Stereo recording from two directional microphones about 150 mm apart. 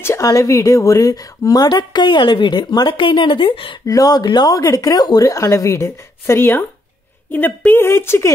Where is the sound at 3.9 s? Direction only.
25° left (ahead or behind).